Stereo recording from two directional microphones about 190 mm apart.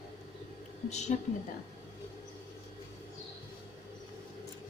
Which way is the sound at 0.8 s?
35° left (ahead or behind).